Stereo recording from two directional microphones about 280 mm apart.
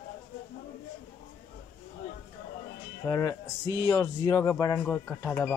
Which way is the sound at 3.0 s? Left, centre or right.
Centre.